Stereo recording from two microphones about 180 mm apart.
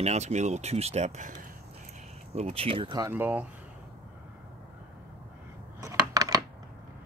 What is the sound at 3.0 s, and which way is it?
Speech, 10° right (ahead or behind).